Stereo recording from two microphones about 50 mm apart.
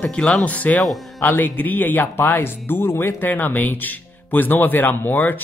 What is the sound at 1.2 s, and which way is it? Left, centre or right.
Speech, left.